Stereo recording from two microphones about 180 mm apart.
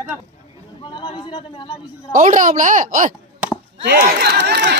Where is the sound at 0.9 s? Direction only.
25° left (ahead or behind).